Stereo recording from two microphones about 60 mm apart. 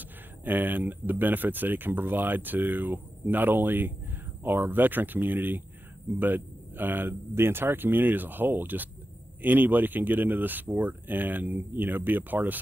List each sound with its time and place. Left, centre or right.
0.0 s speech: right